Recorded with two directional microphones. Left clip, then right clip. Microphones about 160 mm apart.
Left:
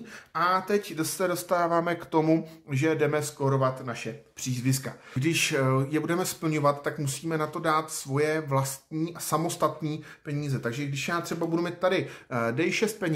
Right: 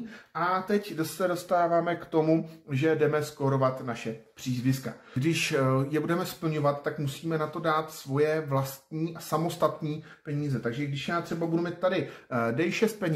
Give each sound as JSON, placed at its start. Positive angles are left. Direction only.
{"t": 0.3, "sound": "speech", "side_deg": 25}
{"t": 12.3, "sound": "speech", "side_deg": 15}